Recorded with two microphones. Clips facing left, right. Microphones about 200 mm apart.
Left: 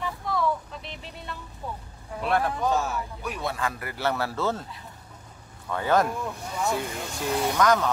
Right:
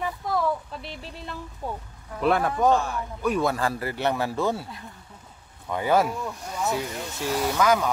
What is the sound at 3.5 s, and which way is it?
Speech, 30° right (ahead or behind).